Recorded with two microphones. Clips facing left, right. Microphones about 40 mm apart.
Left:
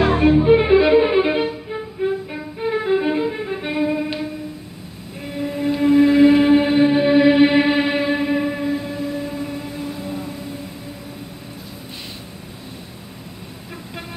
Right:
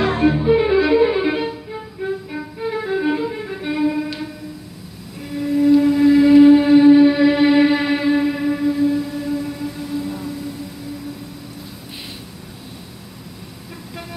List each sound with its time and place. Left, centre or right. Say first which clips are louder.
0.0 s violin: left 2 dB; centre
5.3 s a sound: right 8 dB; left
9.3 s train: right 3 dB; left